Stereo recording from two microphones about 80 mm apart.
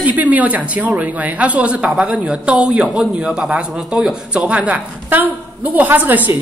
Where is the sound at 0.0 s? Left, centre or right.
Centre.